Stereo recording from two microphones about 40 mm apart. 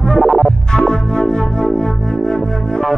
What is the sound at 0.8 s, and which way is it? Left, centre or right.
Music, centre.